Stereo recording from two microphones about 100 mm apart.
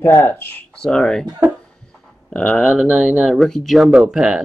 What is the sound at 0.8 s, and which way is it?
Speech, 5° left (ahead or behind).